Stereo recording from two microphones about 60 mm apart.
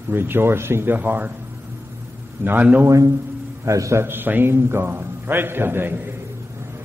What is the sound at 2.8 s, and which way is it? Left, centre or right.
A man's voice, right.